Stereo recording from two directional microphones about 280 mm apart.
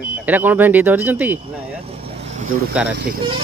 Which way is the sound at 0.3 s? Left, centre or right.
Centre.